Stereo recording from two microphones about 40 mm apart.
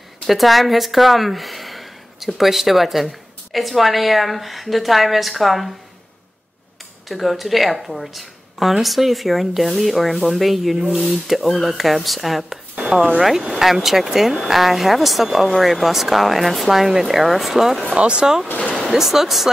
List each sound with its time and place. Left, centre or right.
0.3 s a woman's voice: centre
7.1 s speech: centre
13.6 s speech: centre
17.9 s speech: right
18.6 s a sound: centre
18.9 s speech: centre